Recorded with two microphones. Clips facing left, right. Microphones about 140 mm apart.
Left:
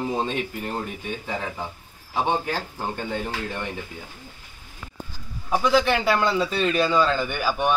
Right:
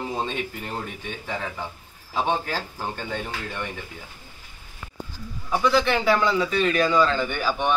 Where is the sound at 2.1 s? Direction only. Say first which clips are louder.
Left 1 dB; 20° left (ahead or behind).